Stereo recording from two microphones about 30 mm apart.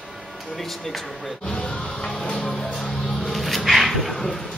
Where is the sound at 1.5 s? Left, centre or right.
Left.